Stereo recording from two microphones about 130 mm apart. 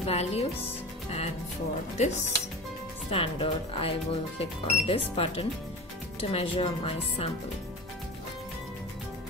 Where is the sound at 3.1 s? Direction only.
45° left (ahead or behind).